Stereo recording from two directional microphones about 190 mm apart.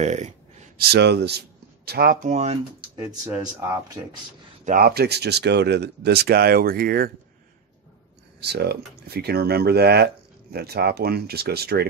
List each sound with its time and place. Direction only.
0.0 s a sound: 35° right (ahead or behind)
0.7 s speech: 60° right (ahead or behind)
2.2 s speech: 35° right (ahead or behind)
3.0 s speech: 10° right (ahead or behind)
4.6 s speech: 50° right (ahead or behind)
8.4 s speech: 60° right (ahead or behind)